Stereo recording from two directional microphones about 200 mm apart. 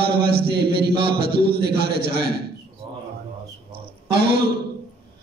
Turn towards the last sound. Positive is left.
turn(degrees=-55)  # may be behind; listen again after turning